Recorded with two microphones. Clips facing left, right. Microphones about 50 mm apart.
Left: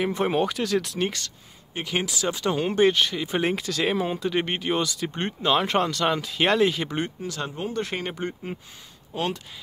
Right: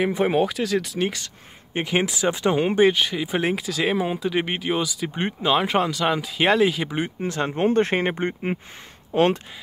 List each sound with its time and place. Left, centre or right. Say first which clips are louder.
0.0 s speech: right 3 dB; centre
1.7 s speech: right 5 dB; right; by 7.1 s centre
7.2 s speech: right 7 dB; right